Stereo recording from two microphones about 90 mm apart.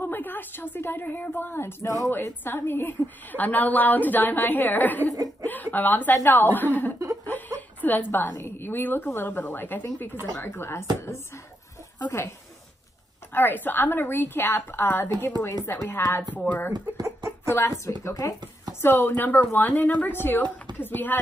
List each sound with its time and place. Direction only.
0.0 s a woman's voice: 20° left (ahead or behind)
5.0 s speech: 45° right (ahead or behind)
5.5 s a woman's voice: 20° left (ahead or behind)
12.1 s speech: 35° left (ahead or behind)
13.3 s a woman's voice: 20° left (ahead or behind)
16.7 s speech: 50° right (ahead or behind)
17.5 s a woman's voice: 30° left (ahead or behind)